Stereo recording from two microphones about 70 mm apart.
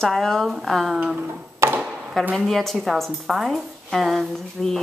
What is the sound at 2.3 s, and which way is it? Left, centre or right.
A woman's voice, centre.